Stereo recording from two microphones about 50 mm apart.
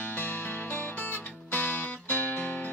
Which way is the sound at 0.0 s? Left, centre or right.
Left.